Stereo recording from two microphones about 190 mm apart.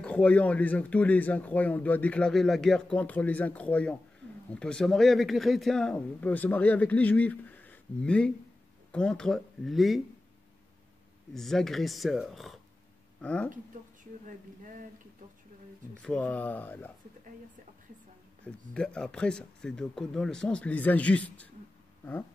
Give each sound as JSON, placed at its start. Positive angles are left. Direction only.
{"t": 0.0, "sound": "speech", "side_deg": 5}
{"t": 11.3, "sound": "speech", "side_deg": 0}
{"t": 14.2, "sound": "speech", "side_deg": -45}
{"t": 16.0, "sound": "speech", "side_deg": 5}
{"t": 18.4, "sound": "speech", "side_deg": 5}